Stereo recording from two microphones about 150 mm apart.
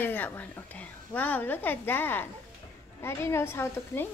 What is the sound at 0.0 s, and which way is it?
A woman's voice, 15° left (ahead or behind).